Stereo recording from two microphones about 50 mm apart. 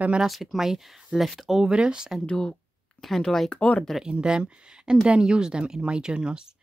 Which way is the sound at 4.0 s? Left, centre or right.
Centre.